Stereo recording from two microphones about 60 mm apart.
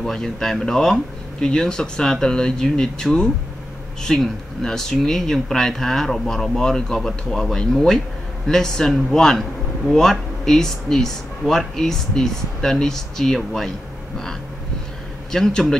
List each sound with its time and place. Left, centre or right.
0.0 s speech: centre
15.3 s speech: centre